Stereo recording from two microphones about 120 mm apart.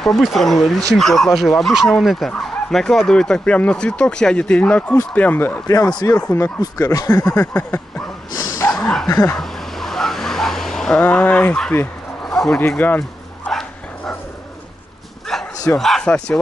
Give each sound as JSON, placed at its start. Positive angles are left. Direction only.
{"t": 0.0, "sound": "speech", "side_deg": 0}
{"t": 5.7, "sound": "speech", "side_deg": 30}
{"t": 7.2, "sound": "speech", "side_deg": 15}
{"t": 8.6, "sound": "dog", "side_deg": 5}
{"t": 9.3, "sound": "a sound", "side_deg": 0}
{"t": 12.5, "sound": "speech", "side_deg": 15}
{"t": 13.5, "sound": "dog", "side_deg": 5}
{"t": 15.3, "sound": "bow-wow", "side_deg": 0}
{"t": 15.7, "sound": "speech", "side_deg": 5}